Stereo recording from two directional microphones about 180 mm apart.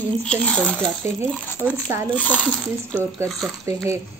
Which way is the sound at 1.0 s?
10° right (ahead or behind).